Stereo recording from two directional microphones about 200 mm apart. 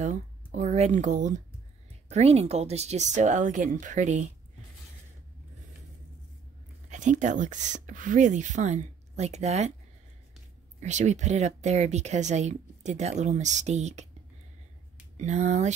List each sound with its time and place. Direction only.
0.0 s speech: 40° right (ahead or behind)
6.9 s speech: 35° right (ahead or behind)
10.8 s speech: 35° right (ahead or behind)
15.1 s speech: 35° right (ahead or behind)